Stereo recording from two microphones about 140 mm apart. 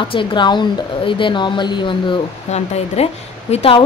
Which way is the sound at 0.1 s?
35° left (ahead or behind).